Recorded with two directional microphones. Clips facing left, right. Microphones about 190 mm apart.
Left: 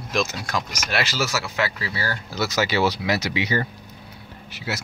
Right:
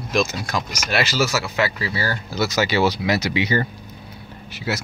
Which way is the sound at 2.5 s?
20° right (ahead or behind).